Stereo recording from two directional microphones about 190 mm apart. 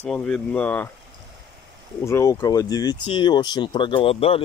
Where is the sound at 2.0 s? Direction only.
15° left (ahead or behind).